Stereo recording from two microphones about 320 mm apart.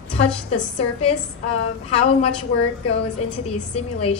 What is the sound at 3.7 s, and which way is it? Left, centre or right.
Speech, centre.